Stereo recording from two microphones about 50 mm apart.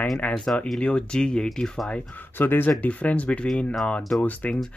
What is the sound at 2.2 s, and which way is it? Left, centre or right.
Speech, left.